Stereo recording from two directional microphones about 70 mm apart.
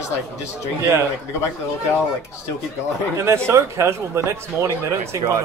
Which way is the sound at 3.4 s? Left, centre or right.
Right.